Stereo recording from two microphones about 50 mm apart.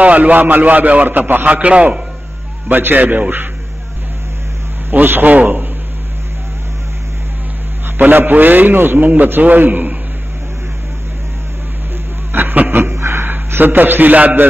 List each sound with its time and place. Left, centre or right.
0.0 s a man's voice: right
2.7 s a man's voice: right
5.0 s a man's voice: right
8.0 s a man's voice: right
12.3 s a man's voice: right
12.9 s a sound: right
13.5 s a man's voice: right